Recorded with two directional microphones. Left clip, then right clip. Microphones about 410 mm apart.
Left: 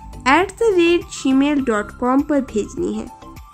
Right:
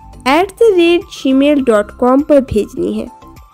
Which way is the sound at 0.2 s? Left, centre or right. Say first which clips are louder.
Right 5 dB; centre.